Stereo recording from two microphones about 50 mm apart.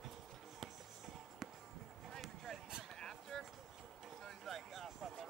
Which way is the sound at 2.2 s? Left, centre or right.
Centre.